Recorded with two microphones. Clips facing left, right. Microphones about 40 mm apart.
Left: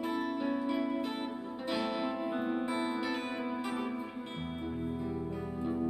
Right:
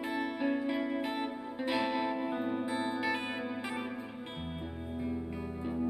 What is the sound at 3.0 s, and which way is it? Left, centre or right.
Music, centre.